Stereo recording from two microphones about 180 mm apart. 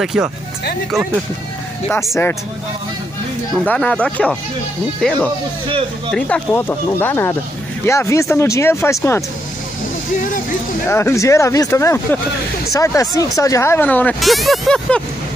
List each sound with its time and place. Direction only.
0.0 s speech: centre (ahead or behind)
1.9 s speech: 15° left (ahead or behind)
3.6 s speech: 5° left (ahead or behind)
10.9 s speech: 15° left (ahead or behind)